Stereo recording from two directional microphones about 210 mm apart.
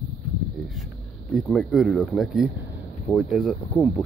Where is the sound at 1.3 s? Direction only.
5° left (ahead or behind).